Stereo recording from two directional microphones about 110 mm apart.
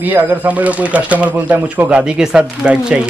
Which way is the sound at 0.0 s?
15° right (ahead or behind).